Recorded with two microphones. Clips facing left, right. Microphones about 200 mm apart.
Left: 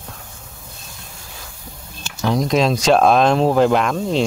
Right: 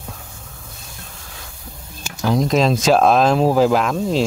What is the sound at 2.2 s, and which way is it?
Speech, centre (ahead or behind).